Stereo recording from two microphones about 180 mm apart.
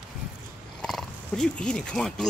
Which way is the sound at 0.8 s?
5° left (ahead or behind).